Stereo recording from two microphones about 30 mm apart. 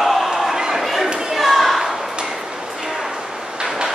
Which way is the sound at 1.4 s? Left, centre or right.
Centre.